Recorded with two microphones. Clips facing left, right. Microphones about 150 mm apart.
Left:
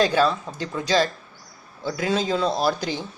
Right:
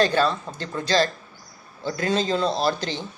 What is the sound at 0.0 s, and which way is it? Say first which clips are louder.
A woman's voice: left 1 dB; 10° left (ahead or behind).